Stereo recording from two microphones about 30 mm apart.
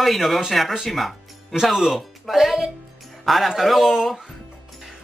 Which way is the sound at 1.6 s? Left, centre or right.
Centre.